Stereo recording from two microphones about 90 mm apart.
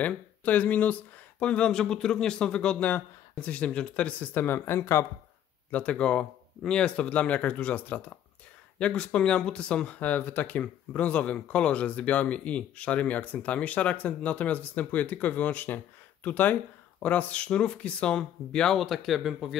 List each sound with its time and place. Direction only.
0.0 s speech: 15° left (ahead or behind)
5.7 s speech: 15° left (ahead or behind); by 19.5 s centre (ahead or behind)